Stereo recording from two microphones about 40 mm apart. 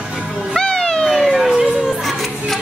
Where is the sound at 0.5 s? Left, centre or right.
Centre.